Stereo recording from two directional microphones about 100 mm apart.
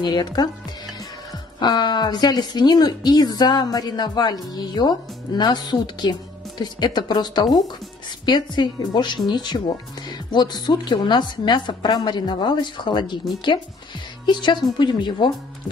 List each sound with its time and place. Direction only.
0.0 s a woman's voice: 45° left (ahead or behind)
1.6 s a woman's voice: 50° left (ahead or behind)
14.2 s a woman's voice: 50° left (ahead or behind)